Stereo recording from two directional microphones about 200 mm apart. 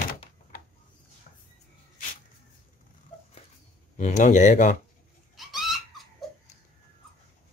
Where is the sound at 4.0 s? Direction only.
35° left (ahead or behind).